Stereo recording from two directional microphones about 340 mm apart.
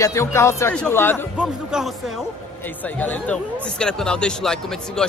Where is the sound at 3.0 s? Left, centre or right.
Centre.